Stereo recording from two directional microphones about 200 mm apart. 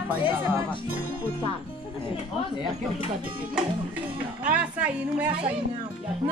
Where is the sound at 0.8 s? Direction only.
45° right (ahead or behind).